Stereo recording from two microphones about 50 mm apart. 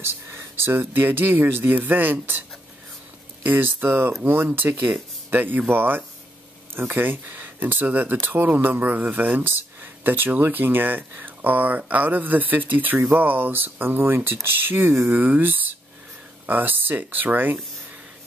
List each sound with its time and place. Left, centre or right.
0.0 s speech: right
3.4 s speech: right